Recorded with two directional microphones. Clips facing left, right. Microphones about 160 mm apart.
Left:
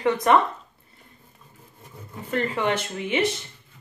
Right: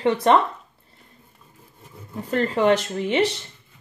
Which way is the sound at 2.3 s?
35° right (ahead or behind).